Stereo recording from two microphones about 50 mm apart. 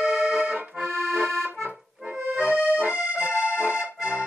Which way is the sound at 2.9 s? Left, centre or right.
Right.